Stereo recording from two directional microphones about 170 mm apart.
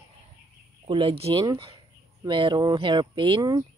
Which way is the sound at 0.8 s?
30° right (ahead or behind).